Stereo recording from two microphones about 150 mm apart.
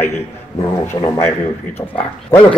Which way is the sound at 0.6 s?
30° left (ahead or behind).